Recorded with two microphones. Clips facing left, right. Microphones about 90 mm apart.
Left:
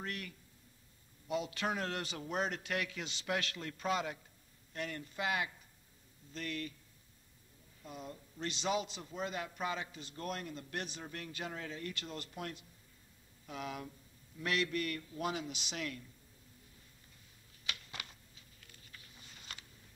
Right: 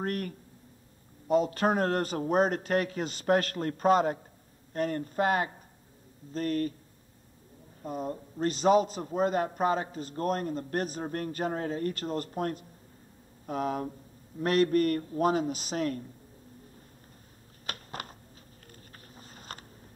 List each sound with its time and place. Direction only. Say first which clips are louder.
0.0 s a man's voice: right 11 dB; 45° right (ahead or behind)
7.8 s a man's voice: right 13 dB; 45° right (ahead or behind)
17.6 s a sound: right 7 dB; 45° right (ahead or behind)
18.9 s vehicle: right 6 dB; 40° right (ahead or behind)